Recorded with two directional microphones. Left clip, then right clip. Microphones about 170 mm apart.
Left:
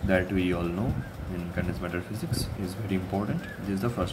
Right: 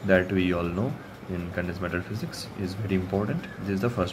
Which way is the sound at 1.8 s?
15° right (ahead or behind).